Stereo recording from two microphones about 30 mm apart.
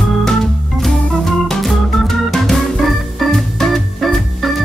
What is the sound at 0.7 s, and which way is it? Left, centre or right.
Organ, centre.